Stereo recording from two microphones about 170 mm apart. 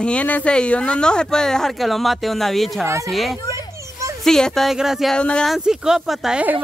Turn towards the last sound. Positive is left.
turn(degrees=-10)  # may be behind; listen again after turning